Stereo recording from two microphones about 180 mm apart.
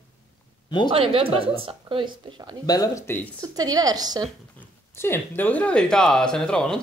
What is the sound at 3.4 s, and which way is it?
Speech, 20° right (ahead or behind).